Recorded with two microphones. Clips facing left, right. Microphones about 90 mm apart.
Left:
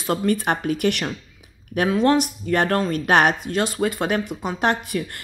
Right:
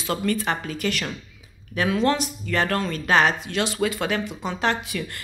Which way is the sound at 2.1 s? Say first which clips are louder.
Left 5 dB; 50° left (ahead or behind).